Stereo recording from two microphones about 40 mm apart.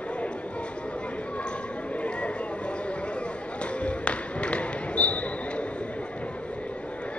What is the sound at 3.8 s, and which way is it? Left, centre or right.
Basketball bounce, left.